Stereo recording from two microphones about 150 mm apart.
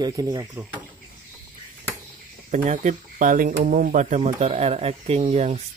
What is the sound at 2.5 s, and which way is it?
Speech, 50° right (ahead or behind).